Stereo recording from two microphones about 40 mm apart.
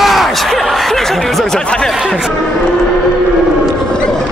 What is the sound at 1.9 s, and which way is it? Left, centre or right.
Speech, centre.